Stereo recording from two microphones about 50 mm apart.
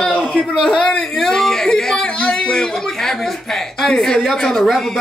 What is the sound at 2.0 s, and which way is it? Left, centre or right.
A man's voice, left.